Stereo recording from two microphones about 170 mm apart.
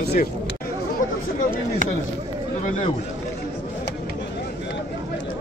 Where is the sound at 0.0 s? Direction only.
70° left (ahead or behind).